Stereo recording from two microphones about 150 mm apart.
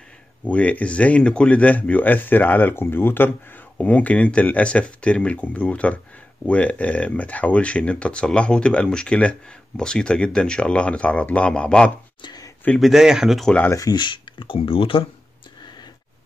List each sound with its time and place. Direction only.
0.5 s speech: 10° left (ahead or behind)
12.2 s speech: 30° left (ahead or behind)
12.6 s speech: centre (ahead or behind)
13.6 s speech: 20° left (ahead or behind); by 15.0 s 35° left (ahead or behind)